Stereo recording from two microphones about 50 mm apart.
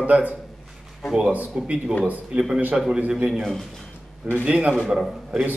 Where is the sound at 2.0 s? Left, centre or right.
Right.